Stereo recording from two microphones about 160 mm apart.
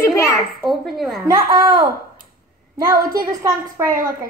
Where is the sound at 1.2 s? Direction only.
25° right (ahead or behind).